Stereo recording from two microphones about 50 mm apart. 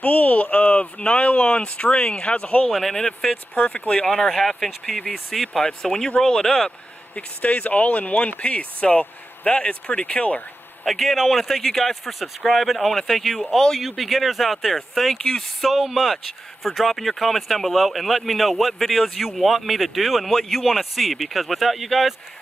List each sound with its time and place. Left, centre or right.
0.0 s a sound: left
0.9 s speech: left
2.7 s speech: centre
3.5 s speech: left
4.0 s speech: centre
5.6 s speech: centre
7.2 s speech: left
10.9 s speech: centre